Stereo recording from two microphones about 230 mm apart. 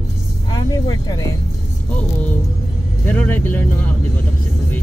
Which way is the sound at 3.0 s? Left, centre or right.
Centre.